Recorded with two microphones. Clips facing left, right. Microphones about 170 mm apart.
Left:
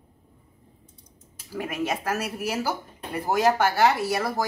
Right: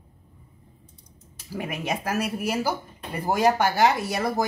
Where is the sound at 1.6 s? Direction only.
15° right (ahead or behind).